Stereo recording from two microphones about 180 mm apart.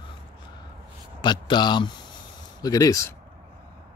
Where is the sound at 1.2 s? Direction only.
25° left (ahead or behind).